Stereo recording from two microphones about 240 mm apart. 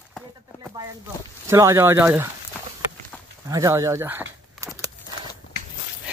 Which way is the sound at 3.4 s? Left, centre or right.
Centre.